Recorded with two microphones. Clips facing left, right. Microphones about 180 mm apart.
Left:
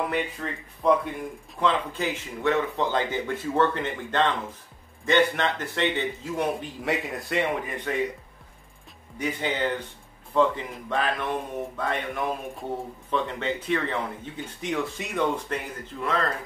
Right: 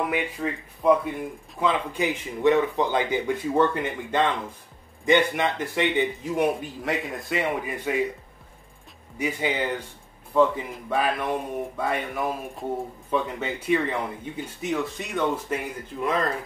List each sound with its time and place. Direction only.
0.1 s speech: 10° right (ahead or behind)
6.8 s a man's voice: centre (ahead or behind)
9.2 s speech: 10° right (ahead or behind)
16.0 s speech: 15° right (ahead or behind)